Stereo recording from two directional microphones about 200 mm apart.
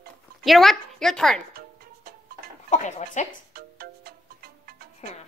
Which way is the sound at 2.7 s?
35° left (ahead or behind).